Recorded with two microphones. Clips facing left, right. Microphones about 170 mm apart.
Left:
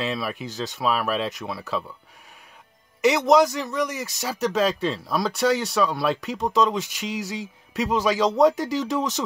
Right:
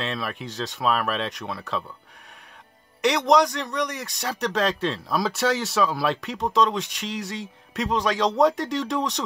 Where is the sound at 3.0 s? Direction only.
5° left (ahead or behind).